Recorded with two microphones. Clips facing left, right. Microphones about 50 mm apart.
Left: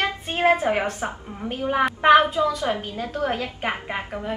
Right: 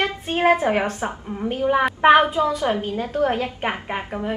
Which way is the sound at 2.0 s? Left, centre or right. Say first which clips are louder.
Right 1 dB; centre.